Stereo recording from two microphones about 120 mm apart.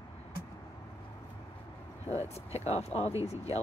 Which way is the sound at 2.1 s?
65° left (ahead or behind).